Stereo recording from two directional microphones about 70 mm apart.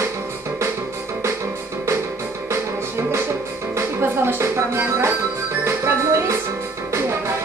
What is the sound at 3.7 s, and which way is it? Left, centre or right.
Speech, right.